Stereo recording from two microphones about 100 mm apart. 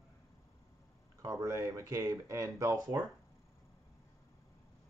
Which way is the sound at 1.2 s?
30° right (ahead or behind).